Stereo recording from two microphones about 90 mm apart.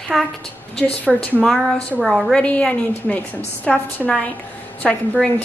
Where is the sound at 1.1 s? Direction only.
5° right (ahead or behind).